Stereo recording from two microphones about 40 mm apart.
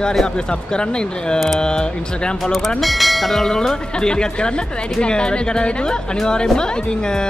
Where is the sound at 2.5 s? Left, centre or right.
Centre.